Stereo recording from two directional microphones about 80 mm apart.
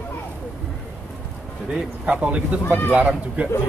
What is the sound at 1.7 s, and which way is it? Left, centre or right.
Speech, centre.